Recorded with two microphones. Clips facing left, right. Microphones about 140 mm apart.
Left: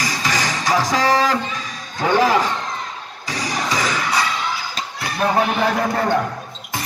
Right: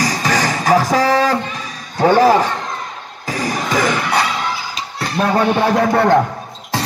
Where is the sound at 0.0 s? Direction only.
45° right (ahead or behind).